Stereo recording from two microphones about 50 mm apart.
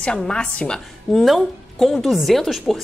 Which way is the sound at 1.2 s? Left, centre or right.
Centre.